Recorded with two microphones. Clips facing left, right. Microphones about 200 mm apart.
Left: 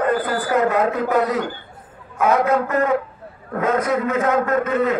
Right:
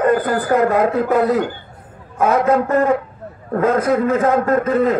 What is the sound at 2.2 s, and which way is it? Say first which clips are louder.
A man's voice: right 2 dB; 35° right (ahead or behind).